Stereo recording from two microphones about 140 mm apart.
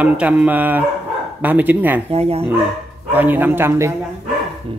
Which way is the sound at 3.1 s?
15° right (ahead or behind).